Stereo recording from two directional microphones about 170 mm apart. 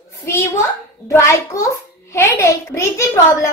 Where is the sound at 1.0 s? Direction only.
15° left (ahead or behind).